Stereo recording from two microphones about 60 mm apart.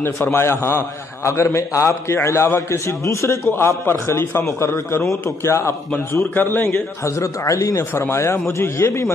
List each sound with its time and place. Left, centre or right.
0.0 s a man's voice: left
3.4 s a man's voice: left
4.5 s a man's voice: left
6.3 s a man's voice: left
7.1 s speech: left
7.9 s a man's voice: left